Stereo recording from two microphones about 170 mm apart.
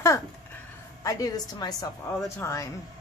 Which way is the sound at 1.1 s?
20° left (ahead or behind).